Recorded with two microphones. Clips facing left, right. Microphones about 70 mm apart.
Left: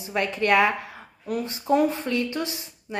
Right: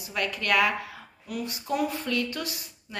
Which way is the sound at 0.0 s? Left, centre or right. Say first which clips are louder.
Left 6 dB; left.